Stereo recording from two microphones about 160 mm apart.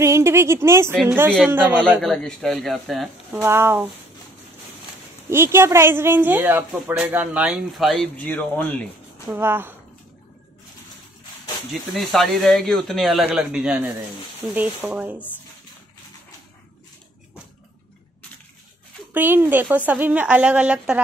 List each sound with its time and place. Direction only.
0.0 s speech: 15° right (ahead or behind)
2.0 s speech: 5° left (ahead or behind)
3.3 s speech: 10° right (ahead or behind)
5.3 s speech: 15° right (ahead or behind); by 8.8 s 10° left (ahead or behind)
9.3 s speech: 15° right (ahead or behind)
11.7 s speech: centre (ahead or behind)
19.1 s speech: 10° right (ahead or behind)